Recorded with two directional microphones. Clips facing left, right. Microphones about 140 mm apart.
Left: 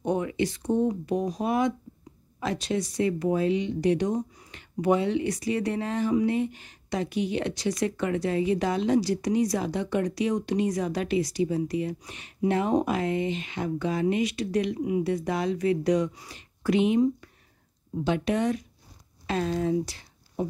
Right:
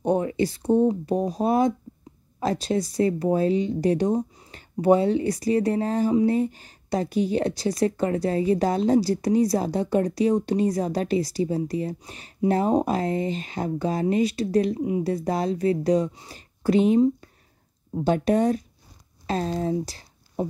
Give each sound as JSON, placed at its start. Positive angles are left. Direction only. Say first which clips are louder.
{"t": 0.0, "sound": "speech", "louder": "right 4 dB", "side_deg": -35}